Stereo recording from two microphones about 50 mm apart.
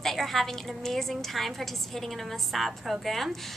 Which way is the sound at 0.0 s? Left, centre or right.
Centre.